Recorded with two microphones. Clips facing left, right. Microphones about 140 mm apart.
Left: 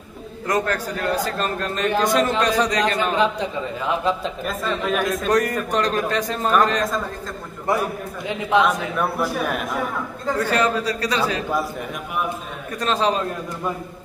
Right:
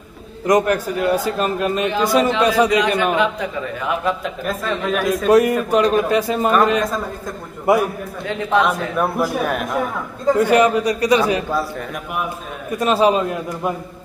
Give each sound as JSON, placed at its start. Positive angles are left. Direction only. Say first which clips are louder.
{"t": 0.5, "sound": "a man's voice", "louder": "right 7 dB", "side_deg": -15}
{"t": 3.2, "sound": "speech", "louder": "right 1 dB", "side_deg": 25}
{"t": 4.5, "sound": "a man's voice", "louder": "right 2 dB", "side_deg": 0}
{"t": 10.3, "sound": "a man's voice", "louder": "right 6 dB", "side_deg": -15}
{"t": 12.7, "sound": "a man's voice", "louder": "right 6 dB", "side_deg": -10}